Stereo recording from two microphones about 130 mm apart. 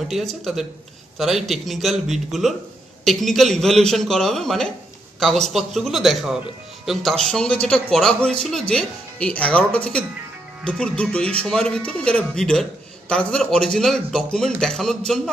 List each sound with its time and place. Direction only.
0.1 s a man's voice: centre (ahead or behind)